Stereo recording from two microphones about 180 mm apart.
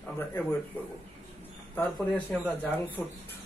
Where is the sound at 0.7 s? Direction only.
10° left (ahead or behind).